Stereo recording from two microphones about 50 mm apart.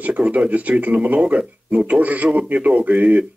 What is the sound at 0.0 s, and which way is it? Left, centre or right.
Speech, right.